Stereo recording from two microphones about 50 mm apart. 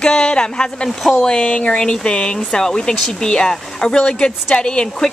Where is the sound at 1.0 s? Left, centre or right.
Centre.